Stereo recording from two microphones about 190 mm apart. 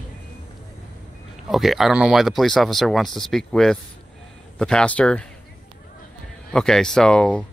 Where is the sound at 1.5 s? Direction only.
Centre (ahead or behind).